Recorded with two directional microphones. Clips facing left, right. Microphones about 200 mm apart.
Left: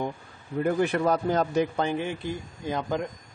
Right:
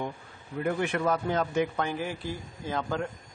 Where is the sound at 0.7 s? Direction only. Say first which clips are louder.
Left 4 dB; 35° left (ahead or behind); by 3.1 s 15° left (ahead or behind).